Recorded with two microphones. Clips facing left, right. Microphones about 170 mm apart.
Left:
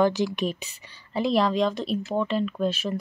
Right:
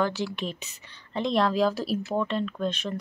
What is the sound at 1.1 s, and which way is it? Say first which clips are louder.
Speech: left 2 dB; 5° left (ahead or behind).